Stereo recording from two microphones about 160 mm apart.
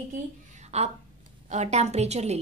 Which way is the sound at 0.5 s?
45° right (ahead or behind).